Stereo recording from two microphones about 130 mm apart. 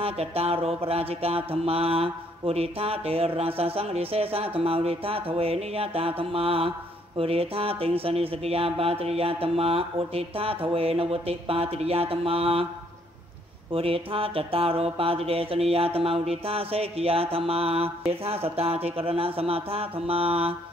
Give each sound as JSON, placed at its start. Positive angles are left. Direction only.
{"t": 0.0, "sound": "mantra", "side_deg": -50}
{"t": 13.7, "sound": "mantra", "side_deg": -45}